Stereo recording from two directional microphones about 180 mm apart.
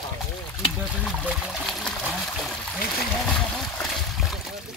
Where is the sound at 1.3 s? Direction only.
Centre (ahead or behind).